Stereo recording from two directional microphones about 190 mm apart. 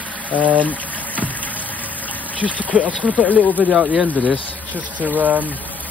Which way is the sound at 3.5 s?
10° right (ahead or behind).